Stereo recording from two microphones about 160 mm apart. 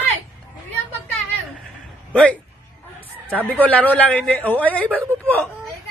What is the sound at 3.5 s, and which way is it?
Speech, 10° left (ahead or behind).